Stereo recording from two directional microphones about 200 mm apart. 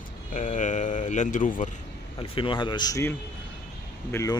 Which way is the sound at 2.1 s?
25° left (ahead or behind).